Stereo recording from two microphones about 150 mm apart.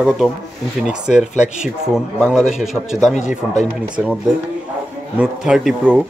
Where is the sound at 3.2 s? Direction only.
55° left (ahead or behind).